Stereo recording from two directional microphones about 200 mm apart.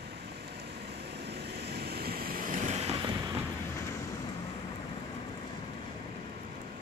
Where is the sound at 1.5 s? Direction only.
55° right (ahead or behind); by 3.1 s 30° right (ahead or behind).